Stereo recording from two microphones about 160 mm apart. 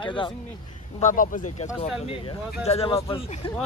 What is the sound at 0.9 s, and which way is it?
Speech, 55° left (ahead or behind).